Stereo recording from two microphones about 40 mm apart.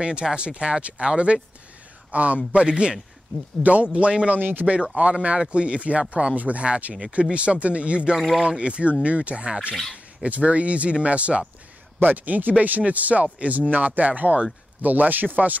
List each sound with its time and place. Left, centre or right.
0.0 s a man's voice: right
4.4 s speech: right
5.5 s a man's voice: right
12.0 s speech: right